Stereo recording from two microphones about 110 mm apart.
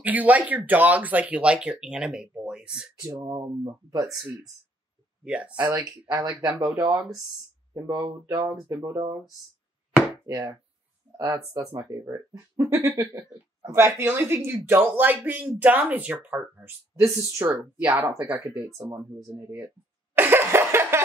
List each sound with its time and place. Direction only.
0.0 s speech: 15° right (ahead or behind)
3.0 s speech: 30° right (ahead or behind)
5.2 s speech: 10° right (ahead or behind)
5.8 s speech: 30° right (ahead or behind)
8.5 s speech: 25° right (ahead or behind)
10.2 s speech: 30° right (ahead or behind); by 18.6 s 15° right (ahead or behind)
18.7 s speech: 30° right (ahead or behind)
20.2 s laughter: 20° right (ahead or behind)